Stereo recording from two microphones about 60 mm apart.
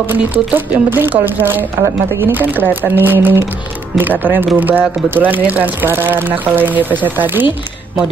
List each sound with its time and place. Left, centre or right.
0.1 s speech: right